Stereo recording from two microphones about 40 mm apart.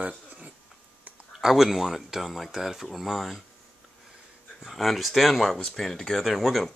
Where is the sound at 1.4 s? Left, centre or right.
Centre.